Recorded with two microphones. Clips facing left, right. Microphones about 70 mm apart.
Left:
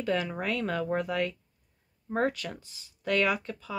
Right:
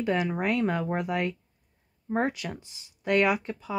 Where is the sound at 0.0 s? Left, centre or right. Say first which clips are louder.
Right 3 dB; centre.